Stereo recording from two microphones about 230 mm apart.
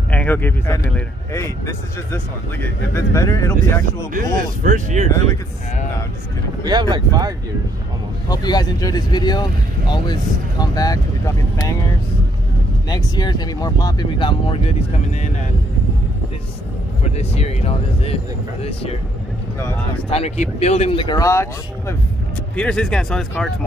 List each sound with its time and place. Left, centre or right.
0.1 s speech: centre
4.1 s speech: right
6.6 s speech: centre
8.3 s speech: centre
12.9 s speech: centre
17.0 s speech: left
20.1 s speech: left; by 23.5 s centre